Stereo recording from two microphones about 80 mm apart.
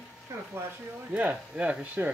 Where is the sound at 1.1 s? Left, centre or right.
Centre.